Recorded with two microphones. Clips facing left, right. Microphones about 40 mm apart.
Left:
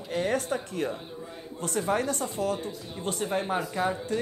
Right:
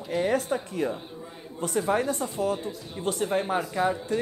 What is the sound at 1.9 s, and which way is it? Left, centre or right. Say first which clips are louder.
Speech: even; right.